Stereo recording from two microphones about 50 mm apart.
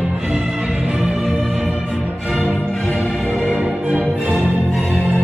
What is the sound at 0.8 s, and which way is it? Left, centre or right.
Music, centre.